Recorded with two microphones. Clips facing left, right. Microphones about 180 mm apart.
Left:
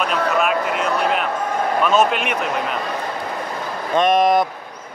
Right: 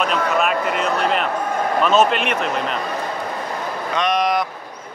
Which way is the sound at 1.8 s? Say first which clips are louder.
Right 1 dB; 5° left (ahead or behind).